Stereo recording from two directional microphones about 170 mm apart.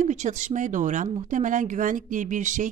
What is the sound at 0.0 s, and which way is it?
Speech, 45° right (ahead or behind).